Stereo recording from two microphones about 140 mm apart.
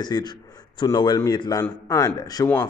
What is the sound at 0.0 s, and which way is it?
A man's voice, 30° left (ahead or behind).